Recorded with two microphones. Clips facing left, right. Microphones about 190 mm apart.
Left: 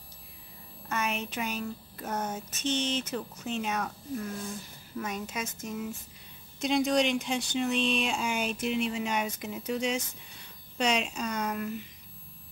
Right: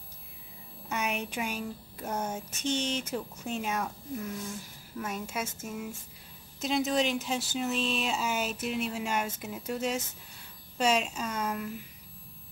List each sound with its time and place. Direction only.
0.9 s speech: 15° right (ahead or behind)